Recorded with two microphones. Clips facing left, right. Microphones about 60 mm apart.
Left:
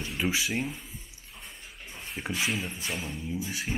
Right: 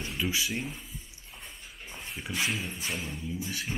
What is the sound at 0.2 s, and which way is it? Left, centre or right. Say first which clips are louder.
Speech: left 2 dB; left.